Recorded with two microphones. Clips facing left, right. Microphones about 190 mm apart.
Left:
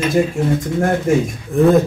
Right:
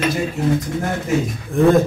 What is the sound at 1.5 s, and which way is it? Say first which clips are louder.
Speech: left 2 dB; centre (ahead or behind).